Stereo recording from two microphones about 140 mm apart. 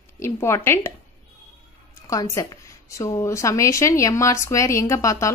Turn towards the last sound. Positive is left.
turn(degrees=20)  # may be behind; listen again after turning